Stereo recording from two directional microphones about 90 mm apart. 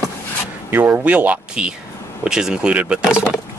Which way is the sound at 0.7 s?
20° right (ahead or behind).